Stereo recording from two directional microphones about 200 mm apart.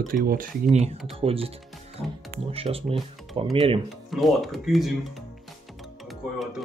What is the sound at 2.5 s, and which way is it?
Speech, 30° right (ahead or behind).